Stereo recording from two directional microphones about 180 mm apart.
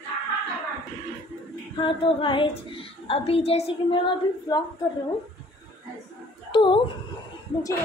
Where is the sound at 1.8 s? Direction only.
30° left (ahead or behind).